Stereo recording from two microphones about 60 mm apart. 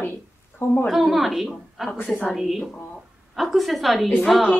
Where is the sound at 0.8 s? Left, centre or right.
Centre.